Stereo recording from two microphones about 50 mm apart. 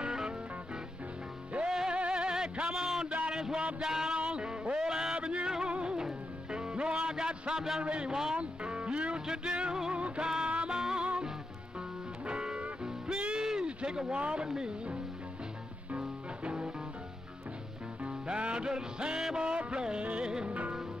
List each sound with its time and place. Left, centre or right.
0.0 s music: centre
1.7 s music: centre
3.3 s a sound: centre
4.7 s music: centre
7.8 s a man's voice: centre
8.4 s music: right
12.3 s music: centre
13.7 s speech: centre
16.0 s music: centre
18.0 s music: right